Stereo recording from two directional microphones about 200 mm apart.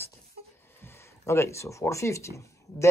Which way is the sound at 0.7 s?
10° left (ahead or behind).